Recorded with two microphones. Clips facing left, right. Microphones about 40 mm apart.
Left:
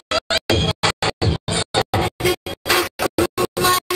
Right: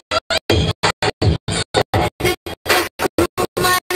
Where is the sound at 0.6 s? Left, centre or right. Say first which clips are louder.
Right 1 dB; left.